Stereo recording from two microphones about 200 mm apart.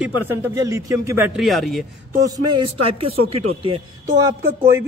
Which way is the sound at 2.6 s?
30° right (ahead or behind).